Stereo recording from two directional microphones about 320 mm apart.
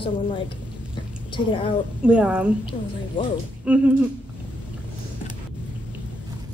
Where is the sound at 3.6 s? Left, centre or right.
Centre.